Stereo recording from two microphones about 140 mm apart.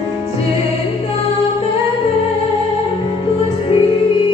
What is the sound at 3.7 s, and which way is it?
Music, 40° left (ahead or behind).